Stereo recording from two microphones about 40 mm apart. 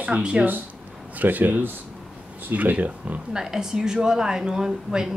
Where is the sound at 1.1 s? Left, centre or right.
Right.